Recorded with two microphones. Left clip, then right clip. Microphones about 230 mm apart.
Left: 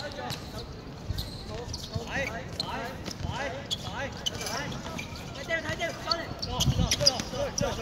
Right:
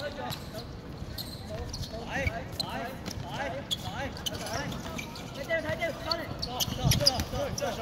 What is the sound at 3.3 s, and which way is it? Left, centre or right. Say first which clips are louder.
Basketball bounce: even; centre.